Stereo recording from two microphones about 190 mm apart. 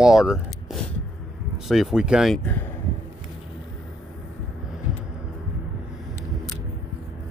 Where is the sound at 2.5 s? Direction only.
10° left (ahead or behind).